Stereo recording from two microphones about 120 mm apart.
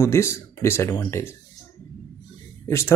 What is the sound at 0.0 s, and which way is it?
Speech, 20° left (ahead or behind).